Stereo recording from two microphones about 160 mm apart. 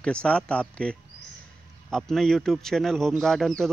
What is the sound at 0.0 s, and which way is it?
Speech, 5° left (ahead or behind).